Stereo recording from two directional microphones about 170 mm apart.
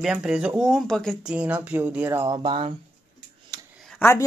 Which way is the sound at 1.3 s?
10° right (ahead or behind).